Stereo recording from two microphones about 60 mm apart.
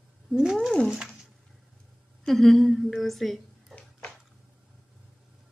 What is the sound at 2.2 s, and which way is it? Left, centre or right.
Speech, centre.